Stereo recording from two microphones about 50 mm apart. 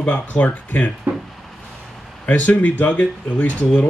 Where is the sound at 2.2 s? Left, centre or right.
Left.